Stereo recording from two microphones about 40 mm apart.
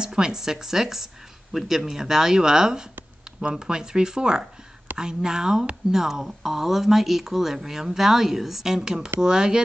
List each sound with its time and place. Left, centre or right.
0.0 s speech: centre